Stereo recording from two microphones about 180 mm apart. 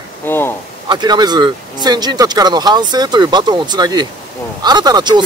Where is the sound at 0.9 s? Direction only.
25° right (ahead or behind).